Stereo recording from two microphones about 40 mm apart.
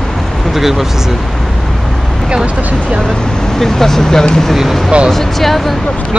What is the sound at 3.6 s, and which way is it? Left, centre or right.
Speech, centre.